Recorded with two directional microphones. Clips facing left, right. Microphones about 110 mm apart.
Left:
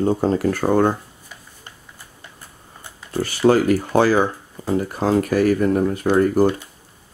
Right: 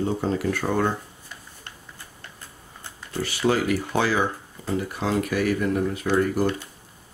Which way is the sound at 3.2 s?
40° left (ahead or behind).